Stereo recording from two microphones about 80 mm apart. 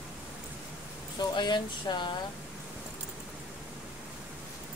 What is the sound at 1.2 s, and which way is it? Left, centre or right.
Speech, left.